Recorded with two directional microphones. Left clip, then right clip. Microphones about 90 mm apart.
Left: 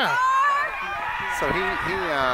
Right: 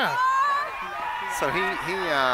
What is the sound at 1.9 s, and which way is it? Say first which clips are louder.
Speech: even; 30° right (ahead or behind).